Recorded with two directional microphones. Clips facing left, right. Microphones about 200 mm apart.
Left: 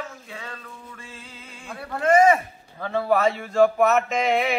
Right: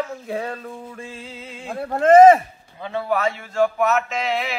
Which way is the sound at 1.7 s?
40° right (ahead or behind).